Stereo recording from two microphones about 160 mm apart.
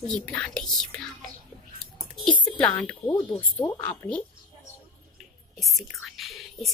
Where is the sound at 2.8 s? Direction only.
5° left (ahead or behind).